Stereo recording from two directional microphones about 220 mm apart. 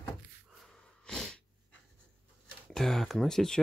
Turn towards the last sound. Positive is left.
turn(degrees=0)  # may be behind; listen again after turning